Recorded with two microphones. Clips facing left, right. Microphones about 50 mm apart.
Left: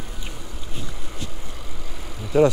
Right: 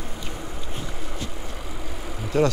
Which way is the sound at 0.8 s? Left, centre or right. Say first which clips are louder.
Right 2 dB; centre.